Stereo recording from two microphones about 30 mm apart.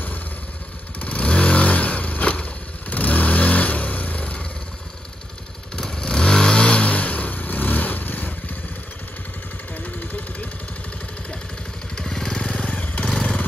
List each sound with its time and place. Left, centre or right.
1.0 s vehicle: left
5.8 s vehicle: left
6.8 s vehicle: left
9.8 s vehicle: left
12.0 s motorcycle: centre
12.3 s motorcycle: left
12.6 s motorcycle: left
13.0 s motorcycle: left